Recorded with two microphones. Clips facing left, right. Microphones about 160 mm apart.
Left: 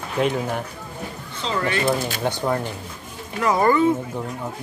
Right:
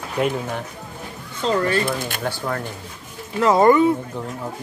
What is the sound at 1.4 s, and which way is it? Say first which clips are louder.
Speech: right 4 dB; 40° right (ahead or behind).